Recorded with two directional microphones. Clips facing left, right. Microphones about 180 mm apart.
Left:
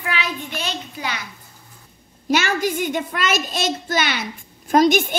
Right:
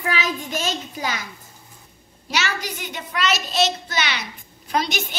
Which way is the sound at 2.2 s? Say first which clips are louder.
Left 7 dB; 50° left (ahead or behind).